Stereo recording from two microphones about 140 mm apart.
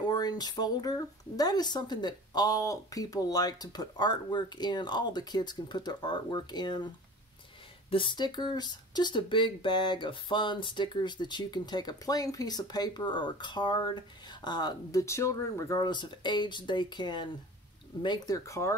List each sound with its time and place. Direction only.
0.0 s speech: 30° left (ahead or behind)
7.9 s speech: 35° left (ahead or behind)